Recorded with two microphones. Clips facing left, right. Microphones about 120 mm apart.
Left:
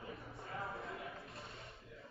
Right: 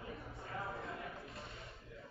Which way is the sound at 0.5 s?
Centre (ahead or behind).